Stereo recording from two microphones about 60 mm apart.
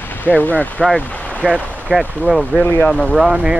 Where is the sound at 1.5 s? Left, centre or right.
Left.